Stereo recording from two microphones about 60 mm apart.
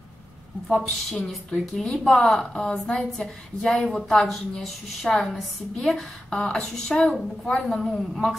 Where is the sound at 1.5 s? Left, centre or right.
Centre.